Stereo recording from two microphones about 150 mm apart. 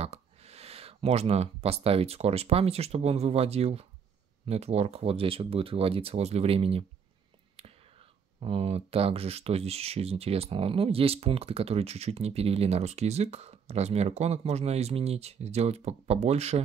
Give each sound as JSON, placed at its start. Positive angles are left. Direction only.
{"t": 0.0, "sound": "speech", "side_deg": -45}